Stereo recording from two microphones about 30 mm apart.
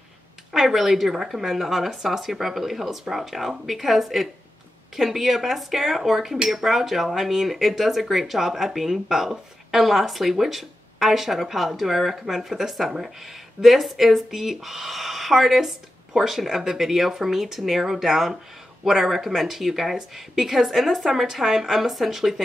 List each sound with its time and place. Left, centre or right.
0.5 s speech: centre